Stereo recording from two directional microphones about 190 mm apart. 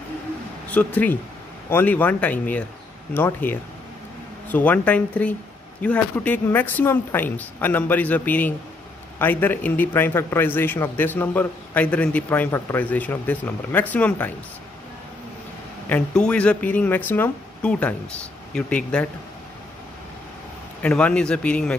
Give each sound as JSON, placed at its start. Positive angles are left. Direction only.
{"t": 0.7, "sound": "a man's voice", "side_deg": 10}
{"t": 15.9, "sound": "a man's voice", "side_deg": 5}
{"t": 20.8, "sound": "speech", "side_deg": 5}